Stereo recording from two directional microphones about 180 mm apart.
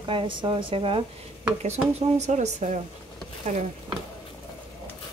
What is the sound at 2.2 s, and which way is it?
Speech, 40° right (ahead or behind).